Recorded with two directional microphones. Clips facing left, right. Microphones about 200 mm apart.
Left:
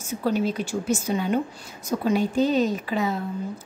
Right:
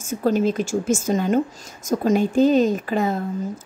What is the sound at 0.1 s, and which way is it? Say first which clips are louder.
A woman's voice: right 4 dB; 45° right (ahead or behind).